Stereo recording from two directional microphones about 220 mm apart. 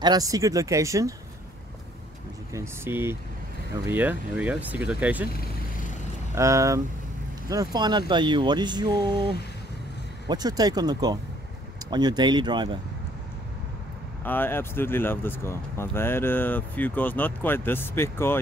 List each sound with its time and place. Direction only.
0.0 s speech: 15° right (ahead or behind)
2.5 s speech: 10° right (ahead or behind)
6.3 s speech: 15° right (ahead or behind)
10.2 s speech: 20° right (ahead or behind)
14.2 s speech: 10° left (ahead or behind)